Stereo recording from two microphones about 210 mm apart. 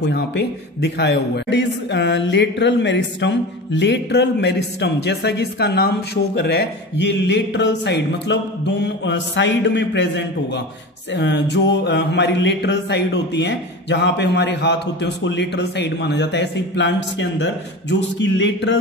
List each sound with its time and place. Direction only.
0.1 s a man's voice: 55° left (ahead or behind)